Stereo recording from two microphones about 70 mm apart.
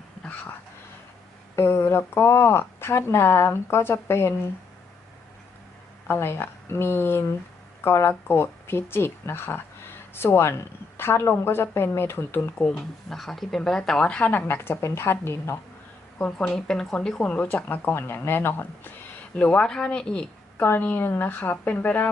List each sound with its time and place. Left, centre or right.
1.5 s speech: left
6.0 s speech: left
12.4 s a woman's voice: left
13.1 s speech: centre
14.3 s speech: left
16.2 s speech: centre
16.5 s speech: centre
17.3 s a woman's voice: left
19.3 s speech: centre
20.8 s a woman's voice: left